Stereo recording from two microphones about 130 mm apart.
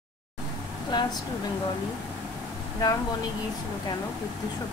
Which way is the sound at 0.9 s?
35° left (ahead or behind).